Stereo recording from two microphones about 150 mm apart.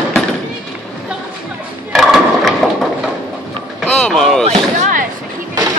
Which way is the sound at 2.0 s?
Centre (ahead or behind).